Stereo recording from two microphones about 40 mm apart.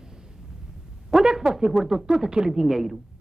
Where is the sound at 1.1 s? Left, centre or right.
Centre.